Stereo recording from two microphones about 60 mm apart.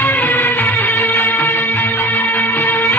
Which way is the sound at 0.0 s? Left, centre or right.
Left.